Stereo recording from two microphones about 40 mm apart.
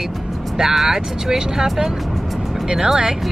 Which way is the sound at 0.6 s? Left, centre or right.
Centre.